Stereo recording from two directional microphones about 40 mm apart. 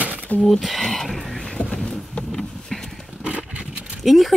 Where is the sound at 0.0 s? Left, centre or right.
Right.